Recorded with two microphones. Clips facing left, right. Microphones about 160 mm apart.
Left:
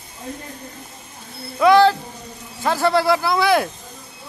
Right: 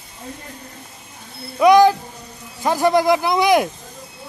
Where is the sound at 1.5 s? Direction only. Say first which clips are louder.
Right 2 dB; 15° right (ahead or behind).